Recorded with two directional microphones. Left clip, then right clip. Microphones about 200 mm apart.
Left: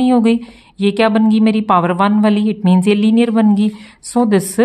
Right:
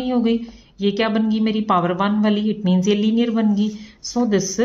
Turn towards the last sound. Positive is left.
turn(degrees=35)  # may be behind; listen again after turning